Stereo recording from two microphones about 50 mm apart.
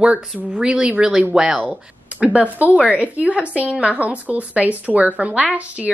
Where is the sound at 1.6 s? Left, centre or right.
Right.